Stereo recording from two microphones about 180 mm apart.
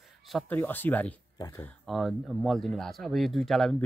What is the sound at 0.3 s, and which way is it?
Speech, 5° left (ahead or behind).